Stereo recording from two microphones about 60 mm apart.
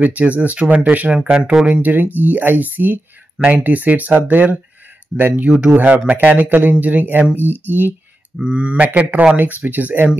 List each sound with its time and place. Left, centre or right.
0.0 s speech: right
1.7 s speech: right
3.3 s speech: centre
5.7 s speech: right
8.5 s speech: centre